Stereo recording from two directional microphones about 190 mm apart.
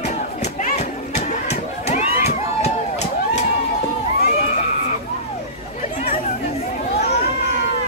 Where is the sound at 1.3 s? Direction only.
35° left (ahead or behind).